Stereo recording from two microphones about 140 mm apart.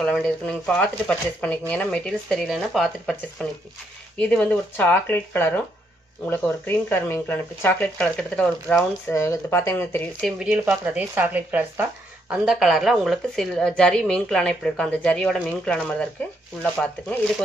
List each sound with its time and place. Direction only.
0.0 s speech: 5° left (ahead or behind)
9.1 s speech: 20° left (ahead or behind)
10.2 s speech: 5° right (ahead or behind)